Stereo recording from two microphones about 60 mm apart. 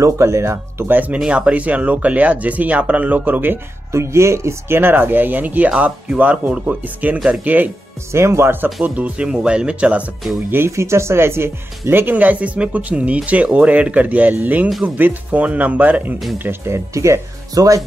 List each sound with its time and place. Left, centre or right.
0.0 s speech: right
0.8 s speech: right
1.1 s speech: centre
3.9 s speech: right
8.1 s speech: right
8.8 s speech: right
10.7 s speech: right
16.6 s speech: right
17.6 s speech: right